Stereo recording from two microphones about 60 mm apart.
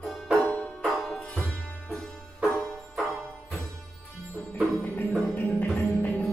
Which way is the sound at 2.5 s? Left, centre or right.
Centre.